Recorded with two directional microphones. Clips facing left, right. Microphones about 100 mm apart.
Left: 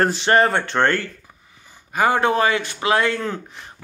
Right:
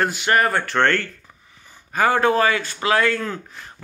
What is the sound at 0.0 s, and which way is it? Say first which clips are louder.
Speech: left 3 dB; 30° left (ahead or behind).